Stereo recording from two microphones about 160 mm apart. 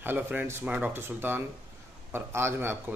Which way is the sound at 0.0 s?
10° right (ahead or behind).